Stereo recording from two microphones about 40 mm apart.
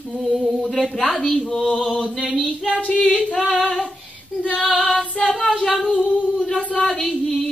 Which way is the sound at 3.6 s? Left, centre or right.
Centre.